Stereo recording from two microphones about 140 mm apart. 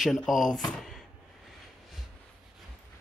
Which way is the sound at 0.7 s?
5° left (ahead or behind).